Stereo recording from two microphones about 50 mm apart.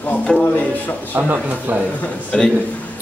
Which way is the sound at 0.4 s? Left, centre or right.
Left.